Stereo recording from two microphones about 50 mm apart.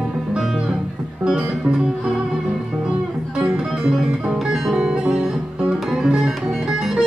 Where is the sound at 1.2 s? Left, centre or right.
Centre.